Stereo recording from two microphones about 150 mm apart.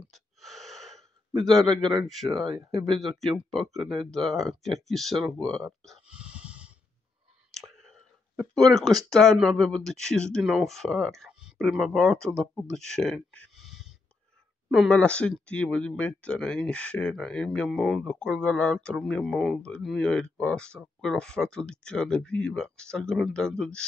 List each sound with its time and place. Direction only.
0.1 s gasp: centre (ahead or behind)
2.0 s speech: centre (ahead or behind)
5.9 s dog: 5° right (ahead or behind)
7.5 s whispering: 5° left (ahead or behind)
8.8 s speech: 25° right (ahead or behind)
9.2 s speech: 5° left (ahead or behind)
12.7 s a sound: 5° left (ahead or behind)
14.7 s speech: 5° left (ahead or behind)